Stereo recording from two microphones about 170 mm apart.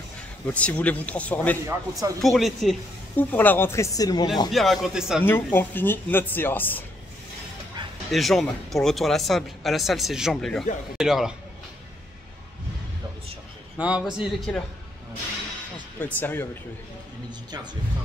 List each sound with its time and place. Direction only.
0.5 s speech: 10° left (ahead or behind)
1.7 s speech: 20° right (ahead or behind)
2.2 s speech: centre (ahead or behind); by 4.3 s 20° left (ahead or behind)
4.5 s speech: centre (ahead or behind)
5.2 s speech: 10° left (ahead or behind)
8.1 s speech: centre (ahead or behind)
13.7 s speech: 5° right (ahead or behind)
16.0 s speech: 10° left (ahead or behind)